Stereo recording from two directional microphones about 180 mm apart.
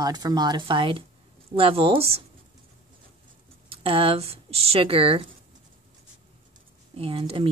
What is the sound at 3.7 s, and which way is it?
Speech, 30° right (ahead or behind).